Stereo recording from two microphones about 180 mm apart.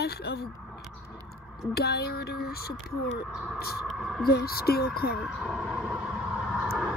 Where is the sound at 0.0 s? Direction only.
60° left (ahead or behind).